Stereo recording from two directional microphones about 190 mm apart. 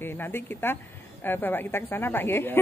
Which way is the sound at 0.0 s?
10° left (ahead or behind).